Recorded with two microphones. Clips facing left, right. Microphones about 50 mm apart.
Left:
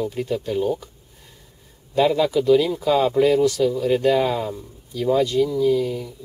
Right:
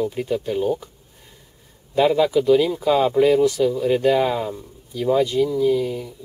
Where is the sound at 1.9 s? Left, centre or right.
Centre.